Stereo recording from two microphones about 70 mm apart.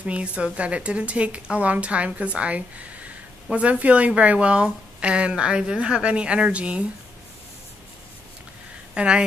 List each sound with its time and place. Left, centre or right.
0.0 s a woman's voice: centre
8.9 s a woman's voice: centre